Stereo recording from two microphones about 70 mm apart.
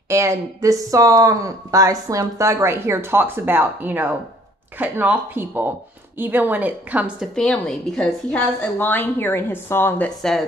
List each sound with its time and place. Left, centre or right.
0.1 s speech: right
7.3 s a woman's voice: centre
8.5 s a woman's voice: left